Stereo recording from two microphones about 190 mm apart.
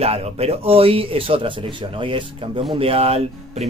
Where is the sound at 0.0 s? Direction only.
35° right (ahead or behind).